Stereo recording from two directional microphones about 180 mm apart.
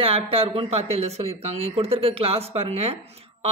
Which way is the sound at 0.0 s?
35° right (ahead or behind).